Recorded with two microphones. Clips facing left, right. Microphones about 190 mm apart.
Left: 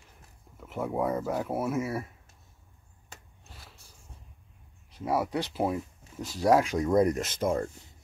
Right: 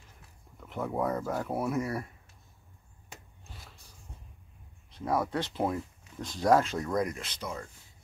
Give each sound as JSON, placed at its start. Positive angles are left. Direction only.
{"t": 0.6, "sound": "speech", "side_deg": 5}
{"t": 4.9, "sound": "speech", "side_deg": 10}
{"t": 6.9, "sound": "speech", "side_deg": 30}
{"t": 7.2, "sound": "speech", "side_deg": 45}